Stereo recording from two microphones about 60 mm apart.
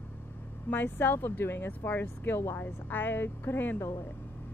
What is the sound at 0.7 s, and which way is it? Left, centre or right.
Speech, left.